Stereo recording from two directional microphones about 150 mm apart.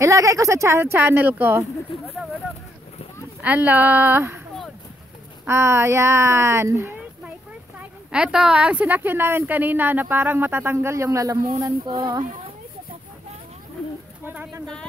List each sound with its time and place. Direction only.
0.0 s speech: 20° right (ahead or behind)
3.4 s a woman's voice: 10° right (ahead or behind)
5.5 s a woman's voice: 15° right (ahead or behind)
8.1 s a woman's voice: 5° right (ahead or behind); by 12.3 s 30° right (ahead or behind)
14.2 s speech: 10° right (ahead or behind)